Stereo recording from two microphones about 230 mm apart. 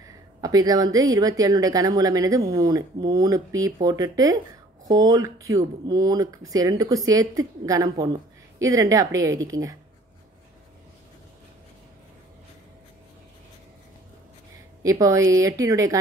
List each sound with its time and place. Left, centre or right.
0.0 s speech: centre
14.8 s speech: centre